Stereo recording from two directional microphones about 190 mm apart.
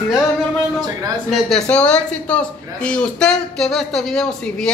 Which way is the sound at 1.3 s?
5° left (ahead or behind).